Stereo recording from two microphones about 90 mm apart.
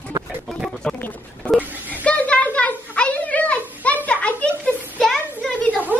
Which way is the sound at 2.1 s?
15° left (ahead or behind).